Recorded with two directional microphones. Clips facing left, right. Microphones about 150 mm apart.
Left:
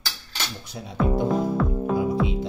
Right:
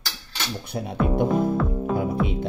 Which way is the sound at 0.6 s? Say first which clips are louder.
Right 7 dB; 60° right (ahead or behind).